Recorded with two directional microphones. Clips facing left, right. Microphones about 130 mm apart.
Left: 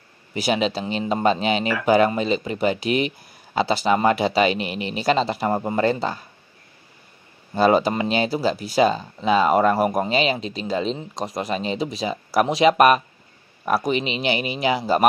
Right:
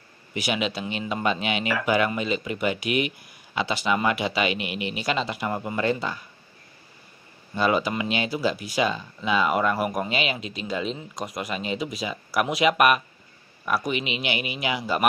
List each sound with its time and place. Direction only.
0.3 s speech: 35° left (ahead or behind)
7.5 s speech: 35° left (ahead or behind)